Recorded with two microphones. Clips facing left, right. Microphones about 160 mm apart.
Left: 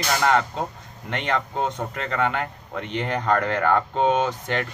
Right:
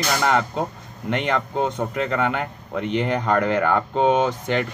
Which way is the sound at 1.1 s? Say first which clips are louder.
Right 3 dB; 5° right (ahead or behind).